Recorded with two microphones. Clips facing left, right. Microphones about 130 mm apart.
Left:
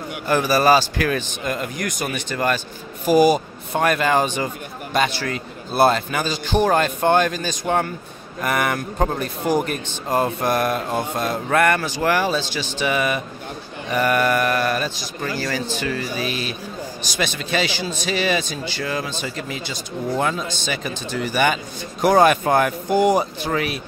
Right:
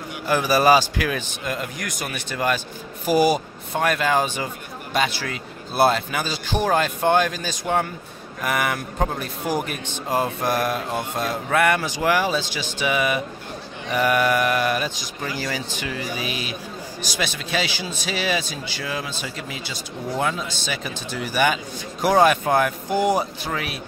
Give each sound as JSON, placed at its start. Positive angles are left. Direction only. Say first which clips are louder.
{"t": 0.3, "sound": "speech", "louder": "left 1 dB", "side_deg": -10}